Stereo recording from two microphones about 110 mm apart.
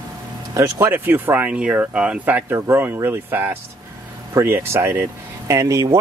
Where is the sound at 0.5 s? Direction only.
30° right (ahead or behind).